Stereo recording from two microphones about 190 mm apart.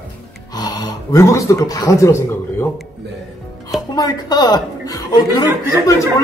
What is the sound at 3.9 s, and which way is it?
A man's voice, 20° left (ahead or behind).